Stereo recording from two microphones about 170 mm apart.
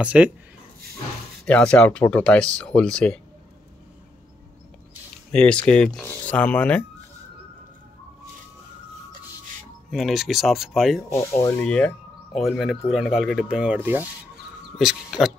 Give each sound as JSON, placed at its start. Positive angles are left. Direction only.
{"t": 0.0, "sound": "speech", "side_deg": -5}
{"t": 1.4, "sound": "speech", "side_deg": 5}
{"t": 5.3, "sound": "speech", "side_deg": 5}
{"t": 9.8, "sound": "speech", "side_deg": 0}
{"t": 11.1, "sound": "speech", "side_deg": 15}
{"t": 11.6, "sound": "speech", "side_deg": 5}
{"t": 14.8, "sound": "speech", "side_deg": -5}